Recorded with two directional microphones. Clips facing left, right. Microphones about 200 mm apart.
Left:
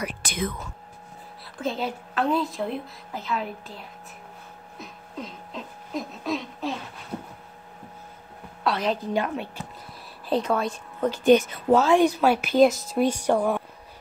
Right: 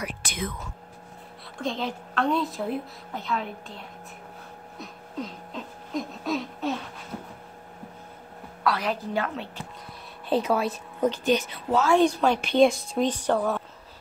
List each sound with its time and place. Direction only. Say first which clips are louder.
0.0 s speech: left 3 dB; 35° left (ahead or behind)
1.6 s a woman's voice: left 1 dB; 5° left (ahead or behind)
4.7 s a sound: right 2 dB; centre (ahead or behind)
8.6 s a woman's voice: left 2 dB; 20° left (ahead or behind)
10.3 s a woman's voice: even; 5° right (ahead or behind)
11.2 s speech: left 7 dB; 50° left (ahead or behind)
11.8 s a woman's voice: right 1 dB; 15° left (ahead or behind)
12.1 s a woman's voice: left 2 dB; 5° left (ahead or behind)